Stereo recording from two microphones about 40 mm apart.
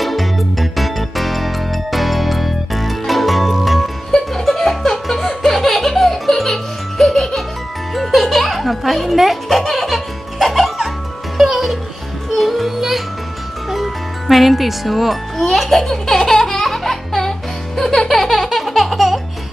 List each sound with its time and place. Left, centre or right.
0.0 s music: centre
15.5 s laughter: centre
16.5 s music: centre